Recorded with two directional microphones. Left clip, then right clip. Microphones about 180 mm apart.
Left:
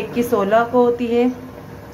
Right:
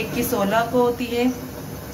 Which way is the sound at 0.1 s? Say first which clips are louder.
Left 6 dB; 60° left (ahead or behind).